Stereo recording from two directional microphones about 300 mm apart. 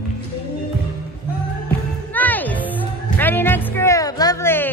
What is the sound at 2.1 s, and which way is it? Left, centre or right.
Music, centre.